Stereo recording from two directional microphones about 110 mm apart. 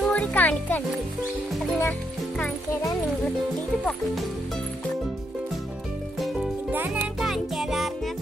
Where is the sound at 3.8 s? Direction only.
Centre (ahead or behind).